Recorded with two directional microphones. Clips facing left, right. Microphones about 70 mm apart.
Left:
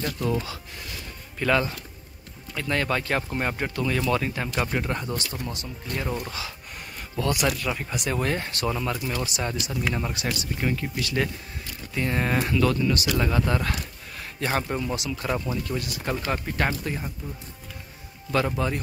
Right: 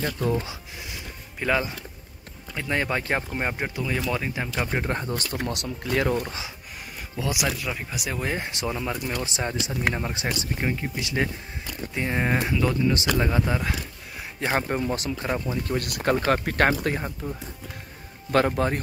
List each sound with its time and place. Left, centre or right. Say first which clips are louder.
0.0 s speech: right 1 dB; right
1.4 s speech: left 1 dB; centre
4.6 s speech: right 1 dB; right
5.4 s speech: right 5 dB; right
7.2 s speech: left 2 dB; centre
8.9 s speech: even; centre
9.2 s speech: right 1 dB; right
14.4 s speech: right 2 dB; right
15.5 s speech: right 2 dB; right
18.6 s speech: right 3 dB; right